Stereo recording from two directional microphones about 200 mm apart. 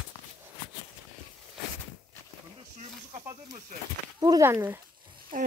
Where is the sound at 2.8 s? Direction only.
30° right (ahead or behind).